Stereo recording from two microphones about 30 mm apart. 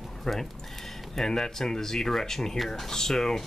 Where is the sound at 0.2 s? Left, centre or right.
Centre.